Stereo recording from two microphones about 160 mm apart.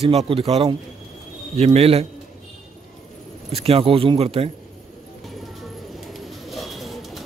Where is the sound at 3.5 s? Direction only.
35° right (ahead or behind).